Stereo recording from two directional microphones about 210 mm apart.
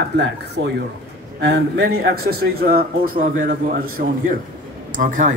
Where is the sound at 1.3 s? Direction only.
50° right (ahead or behind).